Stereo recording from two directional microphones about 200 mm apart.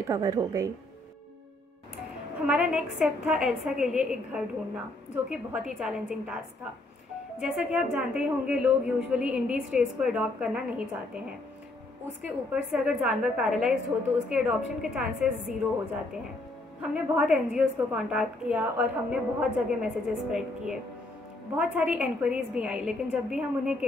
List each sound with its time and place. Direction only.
0.0 s speech: 15° right (ahead or behind)
2.4 s a woman's voice: 5° right (ahead or behind)
12.5 s a woman's voice: 5° right (ahead or behind)
16.8 s a woman's voice: 5° right (ahead or behind)